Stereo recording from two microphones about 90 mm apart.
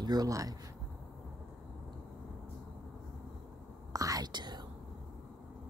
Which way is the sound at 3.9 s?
40° right (ahead or behind).